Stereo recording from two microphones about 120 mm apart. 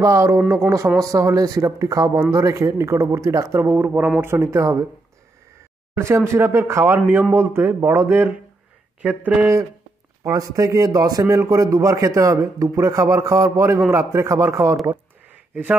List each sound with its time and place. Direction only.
0.0 s a man's voice: 25° right (ahead or behind)
5.9 s a man's voice: 20° right (ahead or behind)
10.2 s a man's voice: 30° right (ahead or behind)